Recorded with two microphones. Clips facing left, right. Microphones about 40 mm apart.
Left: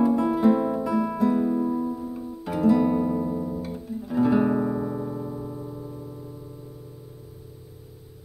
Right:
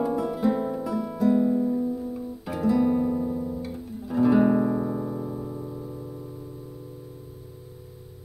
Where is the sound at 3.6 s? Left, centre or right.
Centre.